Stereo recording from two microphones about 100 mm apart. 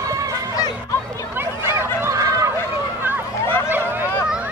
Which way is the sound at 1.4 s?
25° right (ahead or behind).